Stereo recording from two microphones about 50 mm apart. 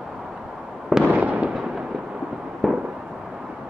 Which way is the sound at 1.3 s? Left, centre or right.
Right.